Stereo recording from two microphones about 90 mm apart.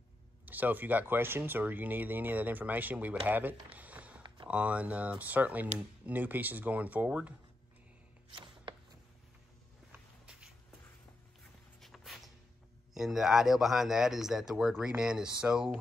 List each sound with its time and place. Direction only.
0.5 s speech: 20° right (ahead or behind)
8.3 s music: 65° right (ahead or behind)
11.8 s a sound: centre (ahead or behind)
12.9 s speech: 5° right (ahead or behind)